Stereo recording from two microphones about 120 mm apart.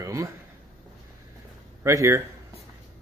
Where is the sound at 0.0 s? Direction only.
25° right (ahead or behind).